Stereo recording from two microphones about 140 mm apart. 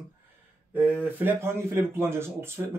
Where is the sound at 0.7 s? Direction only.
15° right (ahead or behind).